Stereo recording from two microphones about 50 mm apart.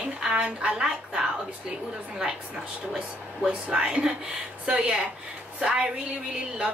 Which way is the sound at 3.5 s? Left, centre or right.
Centre.